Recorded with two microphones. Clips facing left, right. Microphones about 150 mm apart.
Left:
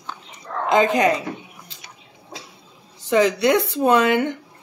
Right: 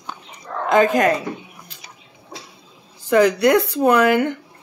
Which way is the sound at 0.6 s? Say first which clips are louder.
Right 2 dB; 20° left (ahead or behind).